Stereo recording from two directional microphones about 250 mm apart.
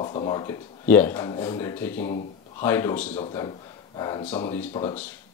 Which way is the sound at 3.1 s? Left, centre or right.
Left.